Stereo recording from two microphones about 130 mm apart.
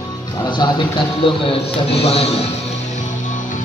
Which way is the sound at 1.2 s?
45° left (ahead or behind).